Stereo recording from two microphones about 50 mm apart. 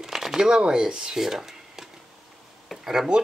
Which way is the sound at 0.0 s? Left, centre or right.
Centre.